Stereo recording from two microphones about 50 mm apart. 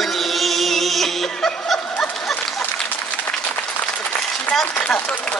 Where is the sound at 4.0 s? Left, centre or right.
Left.